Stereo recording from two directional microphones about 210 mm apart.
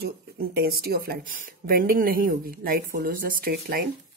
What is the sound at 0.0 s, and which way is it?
Speech, 50° right (ahead or behind).